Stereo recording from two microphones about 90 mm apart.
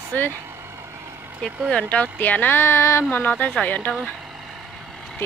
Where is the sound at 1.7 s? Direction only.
10° left (ahead or behind).